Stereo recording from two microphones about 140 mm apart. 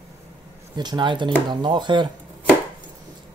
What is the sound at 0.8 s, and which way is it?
Speech, 30° right (ahead or behind).